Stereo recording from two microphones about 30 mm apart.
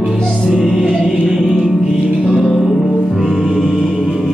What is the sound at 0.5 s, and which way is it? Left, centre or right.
Music, centre.